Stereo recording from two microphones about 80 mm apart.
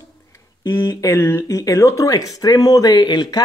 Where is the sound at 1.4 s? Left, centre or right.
Left.